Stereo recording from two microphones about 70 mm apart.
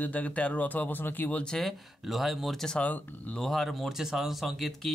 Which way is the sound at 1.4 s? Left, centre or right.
Centre.